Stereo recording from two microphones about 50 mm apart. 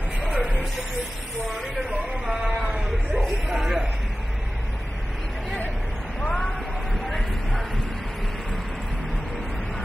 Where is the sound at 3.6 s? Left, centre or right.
Centre.